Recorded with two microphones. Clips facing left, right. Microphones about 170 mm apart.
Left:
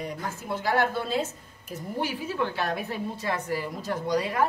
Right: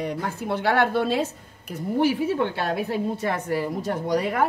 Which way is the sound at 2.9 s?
65° right (ahead or behind).